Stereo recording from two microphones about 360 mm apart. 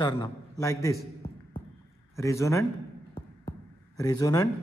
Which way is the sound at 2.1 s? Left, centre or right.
Centre.